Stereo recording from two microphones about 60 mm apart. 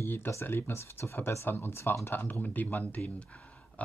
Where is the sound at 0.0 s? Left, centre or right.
Left.